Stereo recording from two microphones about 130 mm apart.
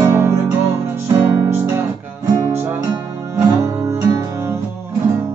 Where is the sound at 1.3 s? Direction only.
20° right (ahead or behind).